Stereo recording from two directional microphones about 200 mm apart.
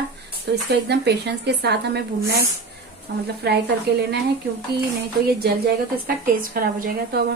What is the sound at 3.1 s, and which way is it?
Speech, 55° right (ahead or behind).